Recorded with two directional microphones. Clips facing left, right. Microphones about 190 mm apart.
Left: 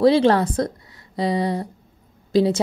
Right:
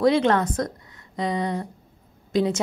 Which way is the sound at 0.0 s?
30° left (ahead or behind).